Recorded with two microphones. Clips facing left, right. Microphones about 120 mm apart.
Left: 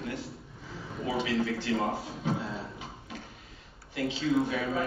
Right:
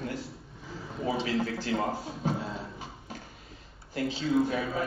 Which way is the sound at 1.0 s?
35° right (ahead or behind).